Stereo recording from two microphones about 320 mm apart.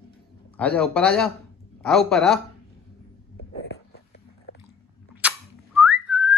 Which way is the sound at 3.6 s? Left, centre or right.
Left.